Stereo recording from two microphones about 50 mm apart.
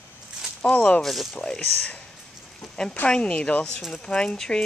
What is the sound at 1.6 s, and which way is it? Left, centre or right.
Speech, left.